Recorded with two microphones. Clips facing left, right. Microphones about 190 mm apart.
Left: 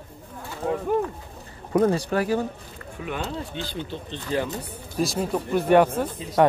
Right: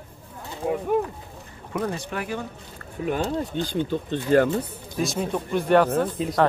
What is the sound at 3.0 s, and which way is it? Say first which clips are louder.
Speech: right 6 dB; 40° right (ahead or behind).